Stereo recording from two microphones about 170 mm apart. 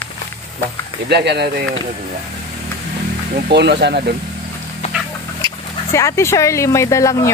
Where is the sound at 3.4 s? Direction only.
80° right.